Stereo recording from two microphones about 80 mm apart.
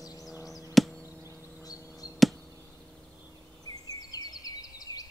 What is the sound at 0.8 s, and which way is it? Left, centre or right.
Chop, centre.